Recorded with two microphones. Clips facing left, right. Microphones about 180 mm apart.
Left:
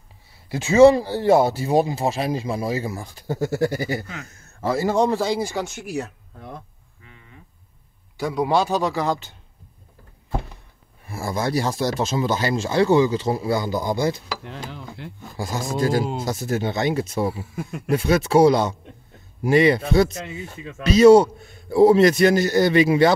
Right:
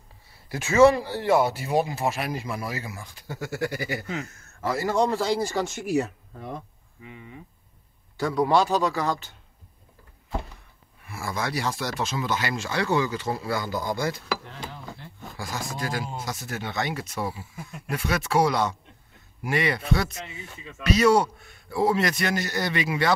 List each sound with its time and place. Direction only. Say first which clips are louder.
0.5 s speech: left 5 dB; 30° left (ahead or behind)
4.6 s a man's voice: left 4 dB; 25° left (ahead or behind)
5.5 s speech: even; centre (ahead or behind)
5.9 s a sound: right 4 dB; 5° right (ahead or behind)
8.6 s a man's voice: left 2 dB; 25° left (ahead or behind)
11.1 s a man's voice: left 6 dB; 35° left (ahead or behind); by 14.1 s 15° left (ahead or behind)
14.4 s a sound: left 4 dB; 75° left (ahead or behind)
15.3 s a man's voice: left 8 dB; 25° left (ahead or behind)
17.6 s speech: left 10 dB; 70° left (ahead or behind)
17.8 s a man's voice: left 8 dB; 25° left (ahead or behind)
20.2 s speech: left 7 dB; 45° left (ahead or behind)
20.8 s a man's voice: left 8 dB; 25° left (ahead or behind)